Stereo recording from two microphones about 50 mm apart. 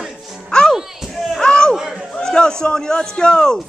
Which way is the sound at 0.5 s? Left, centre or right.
Centre.